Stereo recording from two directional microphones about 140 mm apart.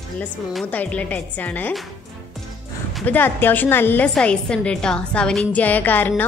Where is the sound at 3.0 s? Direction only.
15° left (ahead or behind).